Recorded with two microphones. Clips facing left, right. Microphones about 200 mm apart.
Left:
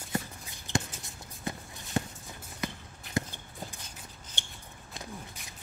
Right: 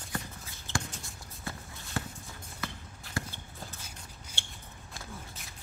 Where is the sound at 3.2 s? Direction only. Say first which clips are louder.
Left 5 dB; 20° left (ahead or behind).